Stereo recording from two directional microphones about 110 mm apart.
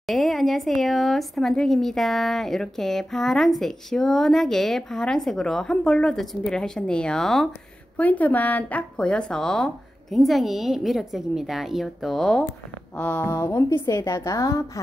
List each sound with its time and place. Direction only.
0.0 s speech: centre (ahead or behind)
8.0 s speech: 15° left (ahead or behind)
12.9 s a woman's voice: 20° left (ahead or behind)